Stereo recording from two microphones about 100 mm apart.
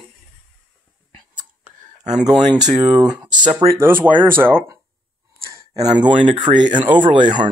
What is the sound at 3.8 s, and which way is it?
Speech, 20° right (ahead or behind).